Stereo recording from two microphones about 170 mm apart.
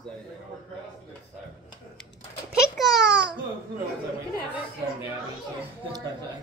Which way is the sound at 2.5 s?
5° right (ahead or behind).